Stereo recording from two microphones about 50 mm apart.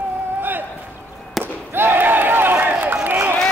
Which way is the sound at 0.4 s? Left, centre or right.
Right.